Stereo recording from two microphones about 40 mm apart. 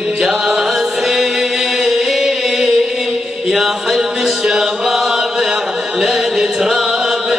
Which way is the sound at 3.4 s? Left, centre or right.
Centre.